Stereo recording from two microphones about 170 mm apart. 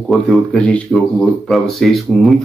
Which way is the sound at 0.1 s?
5° left (ahead or behind).